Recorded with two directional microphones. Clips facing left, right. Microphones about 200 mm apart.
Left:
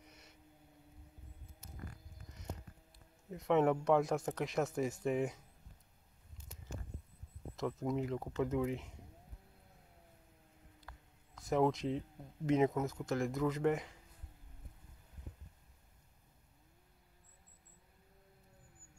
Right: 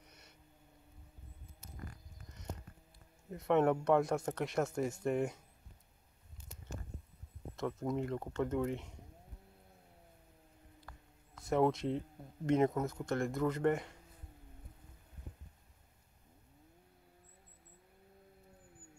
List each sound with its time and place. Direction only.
0.0 s a sound: centre (ahead or behind)
3.3 s speech: centre (ahead or behind)
7.5 s speech: centre (ahead or behind)
11.3 s speech: centre (ahead or behind)